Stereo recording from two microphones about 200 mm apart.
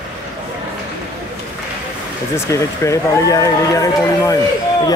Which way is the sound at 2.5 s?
15° left (ahead or behind).